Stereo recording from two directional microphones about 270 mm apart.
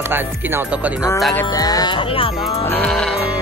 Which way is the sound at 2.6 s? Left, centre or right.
Centre.